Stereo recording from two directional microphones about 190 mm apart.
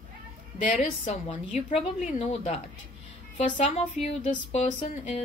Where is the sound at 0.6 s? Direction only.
35° left (ahead or behind).